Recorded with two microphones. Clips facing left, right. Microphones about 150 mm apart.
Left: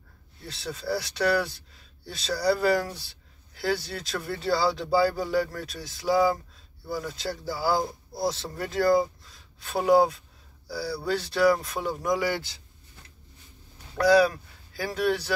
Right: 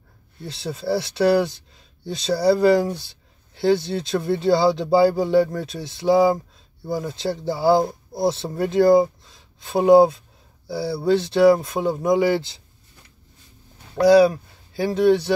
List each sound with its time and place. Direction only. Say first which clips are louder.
0.4 s speech: right 6 dB; 25° right (ahead or behind)
13.9 s speech: right 6 dB; 25° right (ahead or behind)